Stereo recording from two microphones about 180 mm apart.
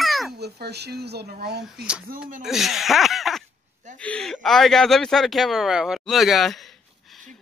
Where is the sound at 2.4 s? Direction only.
Centre (ahead or behind).